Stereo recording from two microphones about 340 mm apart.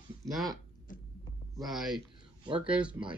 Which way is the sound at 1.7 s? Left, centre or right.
Centre.